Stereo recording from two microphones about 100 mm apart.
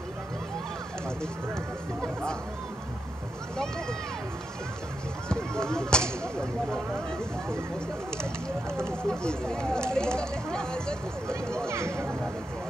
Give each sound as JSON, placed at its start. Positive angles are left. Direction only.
{"t": 3.5, "sound": "speech", "side_deg": 5}
{"t": 5.3, "sound": "speech", "side_deg": 5}
{"t": 8.7, "sound": "speech", "side_deg": 5}
{"t": 11.6, "sound": "speech", "side_deg": -25}